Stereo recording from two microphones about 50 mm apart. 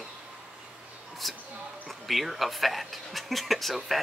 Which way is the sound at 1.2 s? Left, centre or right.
Centre.